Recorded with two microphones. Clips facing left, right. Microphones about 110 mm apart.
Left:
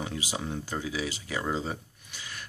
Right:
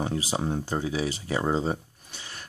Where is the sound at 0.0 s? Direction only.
35° right (ahead or behind).